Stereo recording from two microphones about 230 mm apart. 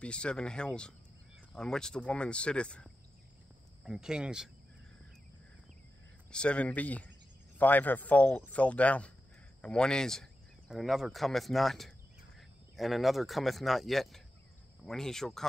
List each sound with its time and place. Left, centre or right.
0.0 s speech: centre
6.3 s speech: centre